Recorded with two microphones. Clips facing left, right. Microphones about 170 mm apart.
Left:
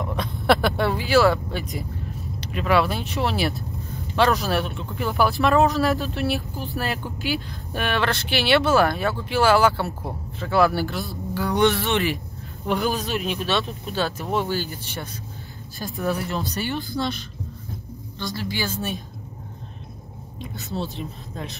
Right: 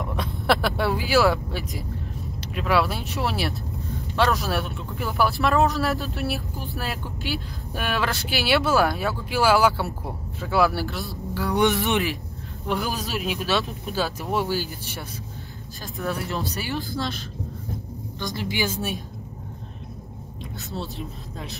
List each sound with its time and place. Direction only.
0.0 s speech: centre (ahead or behind)
11.6 s speech: 15° right (ahead or behind)
12.6 s speech: centre (ahead or behind)
18.2 s speech: 20° right (ahead or behind)
20.5 s speech: centre (ahead or behind)